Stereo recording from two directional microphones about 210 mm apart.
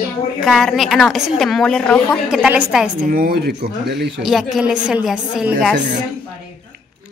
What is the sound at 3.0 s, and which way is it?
Speech, 45° right (ahead or behind).